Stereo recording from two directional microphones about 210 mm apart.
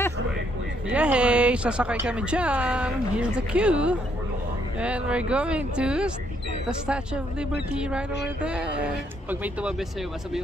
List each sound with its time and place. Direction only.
0.8 s a woman's voice: 5° right (ahead or behind)